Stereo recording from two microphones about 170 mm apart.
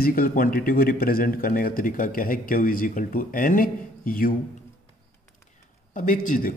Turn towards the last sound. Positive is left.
turn(degrees=50)  # may be behind; listen again after turning